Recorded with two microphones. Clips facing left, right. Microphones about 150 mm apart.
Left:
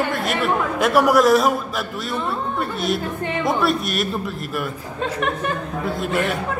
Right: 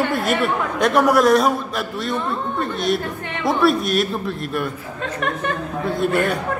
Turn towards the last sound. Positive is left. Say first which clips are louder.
# right 3 dB
turn(degrees=0)  # may be behind; listen again after turning